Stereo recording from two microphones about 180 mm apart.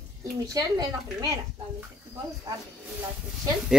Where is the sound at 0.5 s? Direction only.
20° right (ahead or behind).